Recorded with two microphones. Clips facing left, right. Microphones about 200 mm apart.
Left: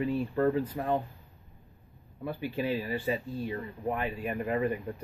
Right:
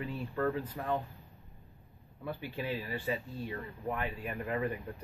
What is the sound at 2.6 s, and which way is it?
Speech, 30° left (ahead or behind).